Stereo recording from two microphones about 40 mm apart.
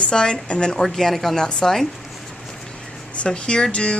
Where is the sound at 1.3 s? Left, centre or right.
Centre.